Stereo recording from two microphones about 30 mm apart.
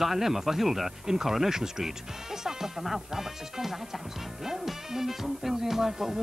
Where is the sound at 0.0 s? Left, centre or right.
Centre.